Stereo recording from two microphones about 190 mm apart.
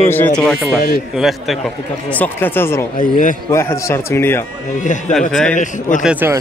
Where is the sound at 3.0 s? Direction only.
45° left (ahead or behind).